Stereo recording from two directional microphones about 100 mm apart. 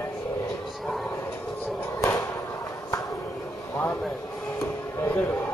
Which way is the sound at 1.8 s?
30° left (ahead or behind).